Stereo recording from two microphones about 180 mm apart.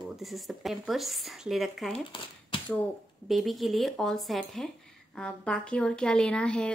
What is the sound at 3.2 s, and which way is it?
Speech, centre (ahead or behind).